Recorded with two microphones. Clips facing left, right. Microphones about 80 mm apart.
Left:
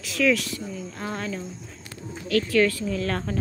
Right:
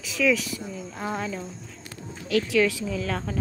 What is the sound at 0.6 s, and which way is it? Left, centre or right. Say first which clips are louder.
Speech: even; centre.